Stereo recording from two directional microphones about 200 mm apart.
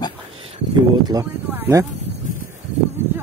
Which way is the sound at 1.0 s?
15° right (ahead or behind).